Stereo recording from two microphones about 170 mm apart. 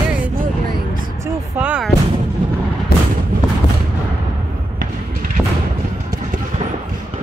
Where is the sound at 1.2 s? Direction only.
5° right (ahead or behind).